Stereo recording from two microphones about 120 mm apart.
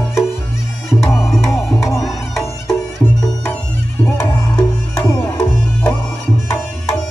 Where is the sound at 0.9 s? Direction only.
25° left (ahead or behind).